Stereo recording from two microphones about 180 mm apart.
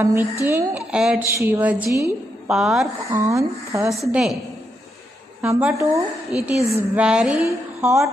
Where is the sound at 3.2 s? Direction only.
15° right (ahead or behind).